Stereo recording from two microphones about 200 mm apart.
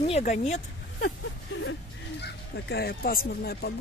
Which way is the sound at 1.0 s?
75° left (ahead or behind).